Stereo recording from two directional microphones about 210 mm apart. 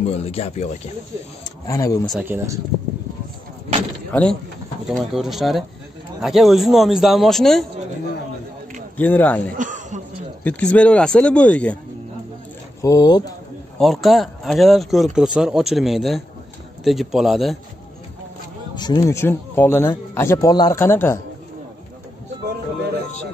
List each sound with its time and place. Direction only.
0.0 s speech: 30° left (ahead or behind)
1.7 s speech: 15° left (ahead or behind)
2.0 s speech: 5° right (ahead or behind)
4.1 s a man's voice: 5° left (ahead or behind)
8.9 s speech: 10° left (ahead or behind)
9.5 s throat clearing: 35° right (ahead or behind)
10.4 s speech: 5° left (ahead or behind)
12.8 s speech: 15° left (ahead or behind)
13.7 s a man's voice: centre (ahead or behind)
18.8 s speech: 20° left (ahead or behind)